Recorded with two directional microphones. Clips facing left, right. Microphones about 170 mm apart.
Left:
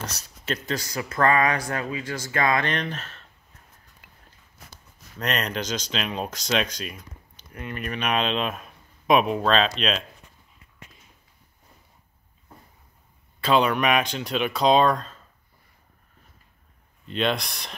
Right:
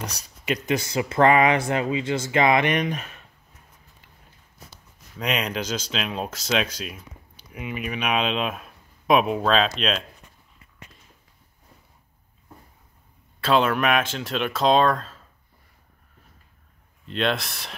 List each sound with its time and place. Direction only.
0.0 s speech: 15° right (ahead or behind)
5.2 s speech: 5° right (ahead or behind)
13.4 s speech: centre (ahead or behind)
17.1 s speech: centre (ahead or behind)